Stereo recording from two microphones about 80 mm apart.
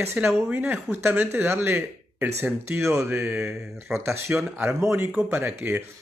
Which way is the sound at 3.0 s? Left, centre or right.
Right.